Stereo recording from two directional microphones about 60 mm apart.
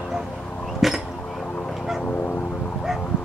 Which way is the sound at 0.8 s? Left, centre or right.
Centre.